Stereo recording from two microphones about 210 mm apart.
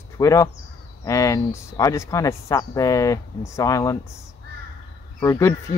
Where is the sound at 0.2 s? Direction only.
15° left (ahead or behind).